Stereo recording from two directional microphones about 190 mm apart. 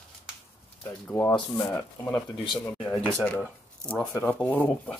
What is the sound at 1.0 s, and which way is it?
Speech, 10° left (ahead or behind).